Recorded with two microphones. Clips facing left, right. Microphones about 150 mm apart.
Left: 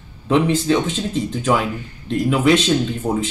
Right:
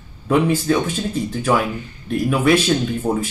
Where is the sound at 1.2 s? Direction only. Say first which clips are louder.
Even; 20° left (ahead or behind).